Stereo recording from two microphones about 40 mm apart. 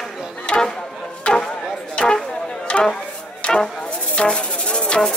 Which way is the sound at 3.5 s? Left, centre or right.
Centre.